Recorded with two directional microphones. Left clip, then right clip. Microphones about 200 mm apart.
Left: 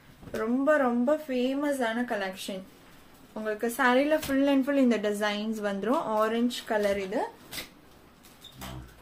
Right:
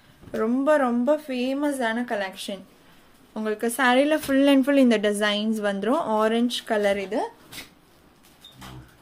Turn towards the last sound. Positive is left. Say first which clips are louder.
# right 4 dB
turn(degrees=-45)  # may be behind; listen again after turning